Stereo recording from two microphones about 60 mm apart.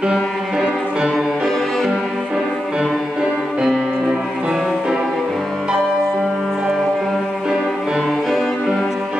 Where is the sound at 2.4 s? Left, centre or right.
Centre.